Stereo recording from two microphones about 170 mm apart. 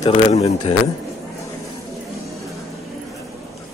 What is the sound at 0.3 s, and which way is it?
Speech, 40° left (ahead or behind).